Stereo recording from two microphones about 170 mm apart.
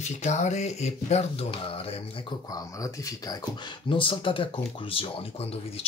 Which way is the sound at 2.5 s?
20° left (ahead or behind).